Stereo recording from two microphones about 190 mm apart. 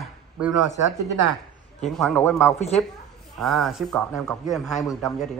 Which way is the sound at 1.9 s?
Centre (ahead or behind).